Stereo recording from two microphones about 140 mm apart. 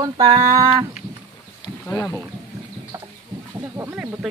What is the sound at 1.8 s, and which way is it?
Speech, 15° left (ahead or behind).